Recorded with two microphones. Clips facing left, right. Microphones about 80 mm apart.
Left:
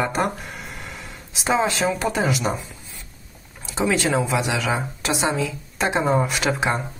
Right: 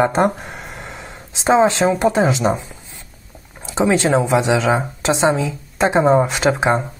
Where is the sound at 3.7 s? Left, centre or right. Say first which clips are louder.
Right 5 dB; right.